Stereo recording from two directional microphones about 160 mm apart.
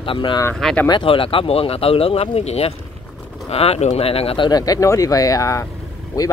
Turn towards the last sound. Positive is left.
turn(degrees=20)  # may be behind; listen again after turning